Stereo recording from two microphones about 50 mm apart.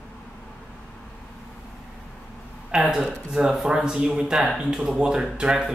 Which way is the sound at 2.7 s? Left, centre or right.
Centre.